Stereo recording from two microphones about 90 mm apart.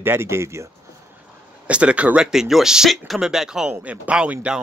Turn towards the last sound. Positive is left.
turn(degrees=-10)  # may be behind; listen again after turning